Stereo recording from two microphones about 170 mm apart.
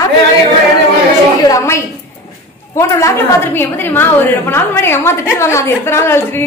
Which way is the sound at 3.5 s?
10° left (ahead or behind).